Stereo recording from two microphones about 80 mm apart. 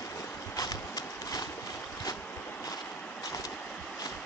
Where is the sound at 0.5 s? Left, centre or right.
Left.